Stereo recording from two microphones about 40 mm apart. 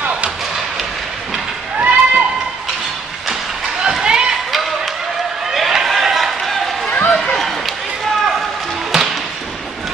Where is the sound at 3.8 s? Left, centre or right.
Centre.